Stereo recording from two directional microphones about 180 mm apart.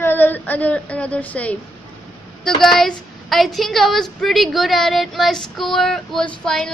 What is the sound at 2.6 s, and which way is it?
A woman's voice, 5° left (ahead or behind).